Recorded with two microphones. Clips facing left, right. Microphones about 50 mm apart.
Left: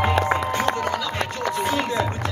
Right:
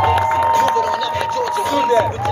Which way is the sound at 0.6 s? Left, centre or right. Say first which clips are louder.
Right 7 dB; left.